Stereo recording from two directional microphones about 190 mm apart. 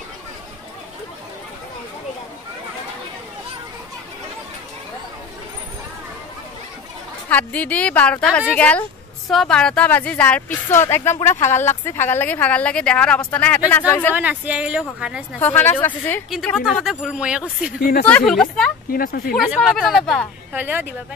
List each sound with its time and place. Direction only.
7.2 s speech: 10° left (ahead or behind)
14.1 s speech: 10° right (ahead or behind)
15.3 s speech: 10° left (ahead or behind)
16.3 s speech: centre (ahead or behind)
17.7 s speech: 55° left (ahead or behind)
18.0 s speech: 5° left (ahead or behind)
18.9 s speech: 55° left (ahead or behind)
19.3 s speech: centre (ahead or behind)
20.5 s speech: 10° right (ahead or behind)